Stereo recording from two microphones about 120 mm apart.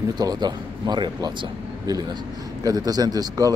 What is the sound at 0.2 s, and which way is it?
Speech, 35° right (ahead or behind).